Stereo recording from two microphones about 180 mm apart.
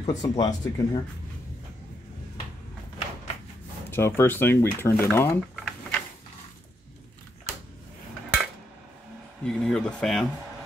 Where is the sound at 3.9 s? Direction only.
10° left (ahead or behind).